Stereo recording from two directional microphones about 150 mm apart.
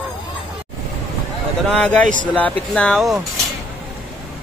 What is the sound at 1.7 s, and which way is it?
A man's voice, 5° left (ahead or behind).